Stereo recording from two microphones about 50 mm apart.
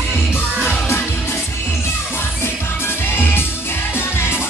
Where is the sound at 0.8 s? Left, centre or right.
Left.